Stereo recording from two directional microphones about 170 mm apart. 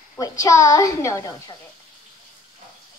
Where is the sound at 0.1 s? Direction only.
20° left (ahead or behind).